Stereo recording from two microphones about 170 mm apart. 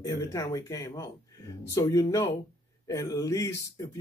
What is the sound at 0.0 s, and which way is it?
Speech, 20° left (ahead or behind).